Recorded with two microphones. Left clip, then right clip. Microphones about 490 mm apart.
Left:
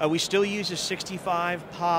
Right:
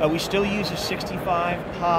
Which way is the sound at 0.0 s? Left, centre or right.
Left.